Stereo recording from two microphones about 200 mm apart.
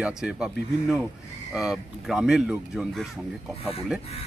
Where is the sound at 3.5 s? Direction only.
30° left (ahead or behind).